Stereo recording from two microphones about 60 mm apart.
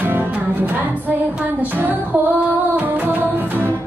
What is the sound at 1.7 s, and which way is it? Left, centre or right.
Female singing, right.